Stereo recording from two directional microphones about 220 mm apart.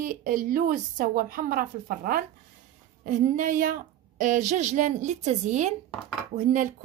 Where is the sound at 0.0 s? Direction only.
40° right (ahead or behind).